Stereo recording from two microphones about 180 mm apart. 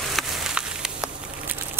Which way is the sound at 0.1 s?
Centre (ahead or behind).